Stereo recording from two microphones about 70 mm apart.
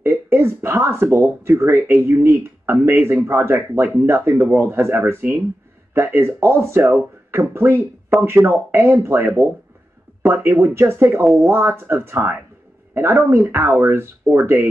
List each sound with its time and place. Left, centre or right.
0.0 s speech: right